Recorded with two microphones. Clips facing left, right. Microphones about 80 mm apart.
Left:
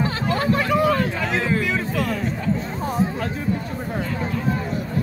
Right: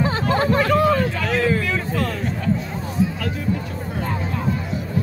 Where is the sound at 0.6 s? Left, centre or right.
Centre.